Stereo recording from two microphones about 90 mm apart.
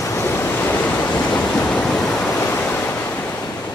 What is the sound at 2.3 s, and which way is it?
Waves, 25° left (ahead or behind).